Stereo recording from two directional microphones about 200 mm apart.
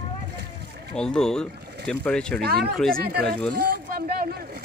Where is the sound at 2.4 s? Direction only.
50° right (ahead or behind).